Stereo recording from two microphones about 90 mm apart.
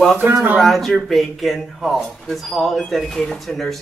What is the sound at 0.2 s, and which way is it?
Speech, 20° right (ahead or behind).